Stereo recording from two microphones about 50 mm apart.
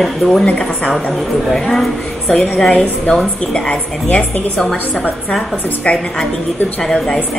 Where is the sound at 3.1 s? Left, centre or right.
Centre.